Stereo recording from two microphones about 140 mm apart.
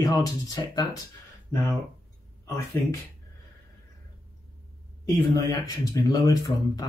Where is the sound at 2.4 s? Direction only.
20° left (ahead or behind).